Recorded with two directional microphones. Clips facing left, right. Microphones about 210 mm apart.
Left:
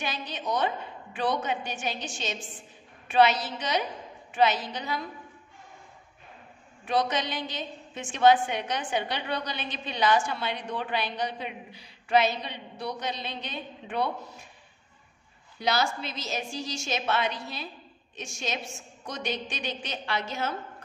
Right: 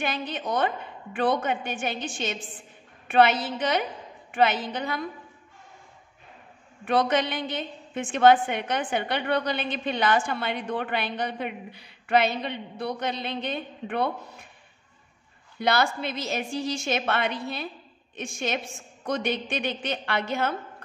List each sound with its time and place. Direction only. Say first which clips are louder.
0.0 s a woman's voice: right 4 dB; 55° right (ahead or behind)
6.8 s a woman's voice: right 4 dB; 55° right (ahead or behind)
15.6 s a woman's voice: right 3 dB; 60° right (ahead or behind)